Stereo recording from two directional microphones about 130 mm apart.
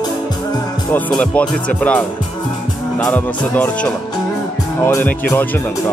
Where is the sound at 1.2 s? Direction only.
10° left (ahead or behind).